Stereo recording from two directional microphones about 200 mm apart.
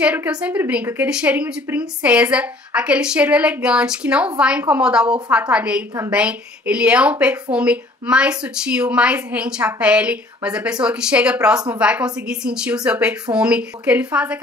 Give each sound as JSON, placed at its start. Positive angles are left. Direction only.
{"t": 0.0, "sound": "speech", "side_deg": -5}